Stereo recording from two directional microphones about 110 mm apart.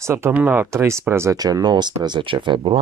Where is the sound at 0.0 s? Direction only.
20° right (ahead or behind).